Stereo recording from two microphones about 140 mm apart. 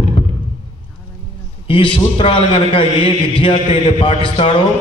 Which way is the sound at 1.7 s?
40° left (ahead or behind).